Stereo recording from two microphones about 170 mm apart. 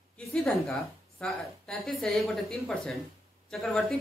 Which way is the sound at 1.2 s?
Centre (ahead or behind).